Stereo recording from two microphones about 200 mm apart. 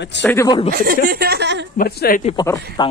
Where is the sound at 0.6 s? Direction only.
50° right (ahead or behind).